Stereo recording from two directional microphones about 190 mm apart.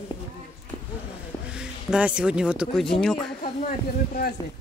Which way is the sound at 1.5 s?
5° right (ahead or behind).